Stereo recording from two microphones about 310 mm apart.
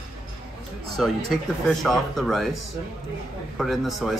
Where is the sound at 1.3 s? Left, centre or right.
Centre.